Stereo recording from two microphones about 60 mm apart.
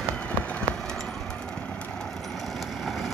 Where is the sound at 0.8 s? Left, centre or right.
Centre.